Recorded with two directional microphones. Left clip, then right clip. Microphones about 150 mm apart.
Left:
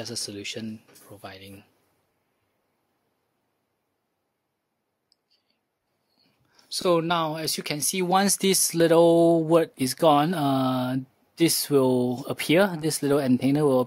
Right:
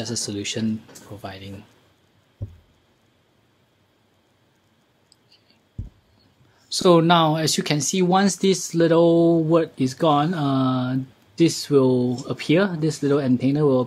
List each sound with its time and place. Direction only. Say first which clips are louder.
0.0 s speech: right 5 dB; 25° left (ahead or behind)
1.2 s speech: right 5 dB; 30° left (ahead or behind)
6.7 s speech: right 7 dB; 20° left (ahead or behind); by 13.8 s 50° left (ahead or behind)